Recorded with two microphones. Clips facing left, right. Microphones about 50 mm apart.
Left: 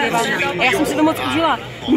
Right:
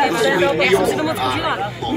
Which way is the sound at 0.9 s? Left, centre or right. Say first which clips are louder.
Left 2 dB; left.